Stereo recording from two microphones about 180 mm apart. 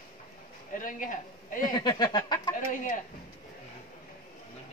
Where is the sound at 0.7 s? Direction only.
50° left (ahead or behind).